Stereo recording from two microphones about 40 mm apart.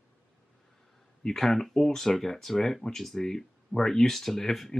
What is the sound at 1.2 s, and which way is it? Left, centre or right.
Speech, centre.